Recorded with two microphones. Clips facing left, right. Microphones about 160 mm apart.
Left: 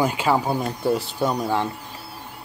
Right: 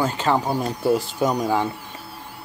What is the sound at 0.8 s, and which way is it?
Speech, centre (ahead or behind).